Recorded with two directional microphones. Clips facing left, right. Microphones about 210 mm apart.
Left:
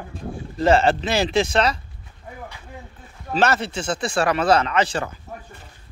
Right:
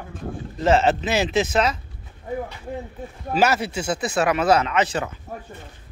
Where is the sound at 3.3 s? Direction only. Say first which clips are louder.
Even; 10° right (ahead or behind).